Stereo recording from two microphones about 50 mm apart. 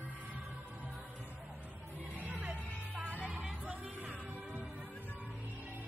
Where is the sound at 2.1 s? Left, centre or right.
Right.